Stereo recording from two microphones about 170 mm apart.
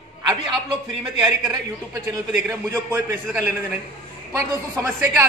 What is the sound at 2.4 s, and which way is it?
A man's voice, 10° right (ahead or behind).